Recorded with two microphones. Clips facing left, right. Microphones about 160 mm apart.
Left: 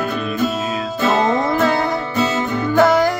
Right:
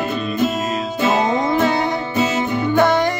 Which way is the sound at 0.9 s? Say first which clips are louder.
Left 1 dB; 20° right (ahead or behind).